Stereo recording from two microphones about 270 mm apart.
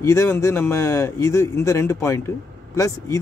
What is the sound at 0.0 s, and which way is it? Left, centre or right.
Speech, centre.